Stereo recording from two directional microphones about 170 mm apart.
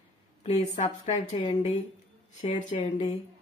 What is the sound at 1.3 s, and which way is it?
Speech, 25° left (ahead or behind).